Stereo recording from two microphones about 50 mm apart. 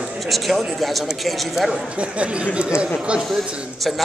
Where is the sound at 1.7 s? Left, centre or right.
Right.